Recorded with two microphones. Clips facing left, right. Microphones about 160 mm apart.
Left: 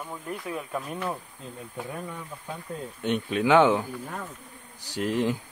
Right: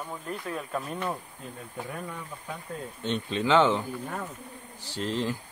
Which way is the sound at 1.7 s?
15° left (ahead or behind).